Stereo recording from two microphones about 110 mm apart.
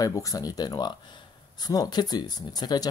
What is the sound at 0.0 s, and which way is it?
Speech, 30° left (ahead or behind).